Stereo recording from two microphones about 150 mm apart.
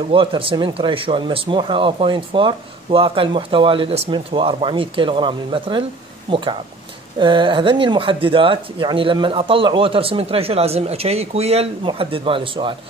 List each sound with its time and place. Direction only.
0.1 s speech: 35° right (ahead or behind)